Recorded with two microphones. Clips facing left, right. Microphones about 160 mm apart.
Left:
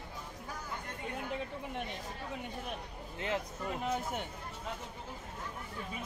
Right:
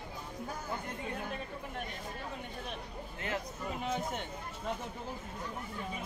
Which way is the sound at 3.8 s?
5° left (ahead or behind).